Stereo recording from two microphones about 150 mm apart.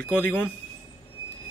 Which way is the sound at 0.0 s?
10° left (ahead or behind).